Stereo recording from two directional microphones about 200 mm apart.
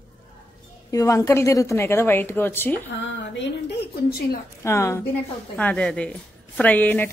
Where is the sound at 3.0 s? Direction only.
70° left (ahead or behind).